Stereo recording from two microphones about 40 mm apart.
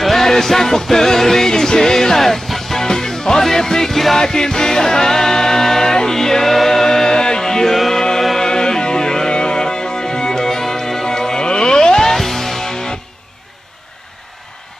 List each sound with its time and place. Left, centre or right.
0.0 s music: centre